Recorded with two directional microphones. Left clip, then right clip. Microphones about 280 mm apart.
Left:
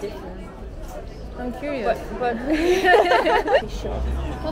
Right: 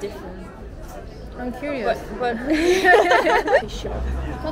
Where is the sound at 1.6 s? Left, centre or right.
Centre.